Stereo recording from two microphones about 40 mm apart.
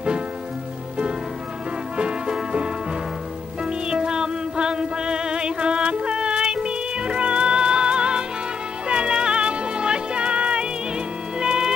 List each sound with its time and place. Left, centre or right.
2.0 s music: centre